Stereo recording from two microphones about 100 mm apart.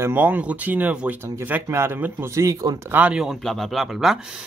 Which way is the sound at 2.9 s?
15° right (ahead or behind).